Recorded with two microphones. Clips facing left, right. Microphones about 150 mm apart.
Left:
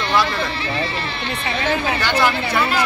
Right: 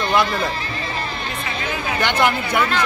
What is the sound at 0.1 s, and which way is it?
Speech, 20° right (ahead or behind).